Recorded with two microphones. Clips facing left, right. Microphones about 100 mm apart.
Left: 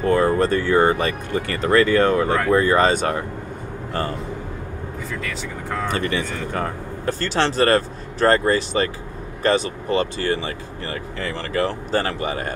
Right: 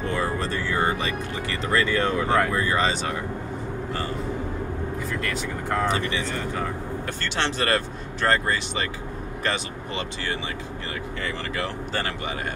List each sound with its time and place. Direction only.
0.1 s speech: 50° left (ahead or behind)
5.2 s speech: centre (ahead or behind)
5.9 s speech: 50° left (ahead or behind)
7.1 s speech: 35° left (ahead or behind)